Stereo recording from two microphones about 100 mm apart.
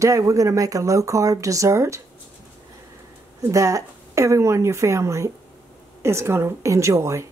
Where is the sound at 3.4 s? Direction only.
35° right (ahead or behind).